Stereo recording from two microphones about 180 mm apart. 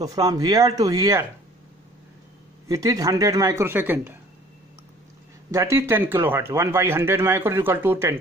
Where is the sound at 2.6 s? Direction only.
20° right (ahead or behind).